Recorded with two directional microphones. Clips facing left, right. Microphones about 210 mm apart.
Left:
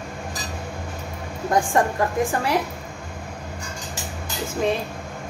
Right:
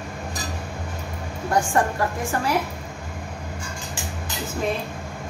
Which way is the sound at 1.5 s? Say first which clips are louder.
Left 1 dB; 15° left (ahead or behind).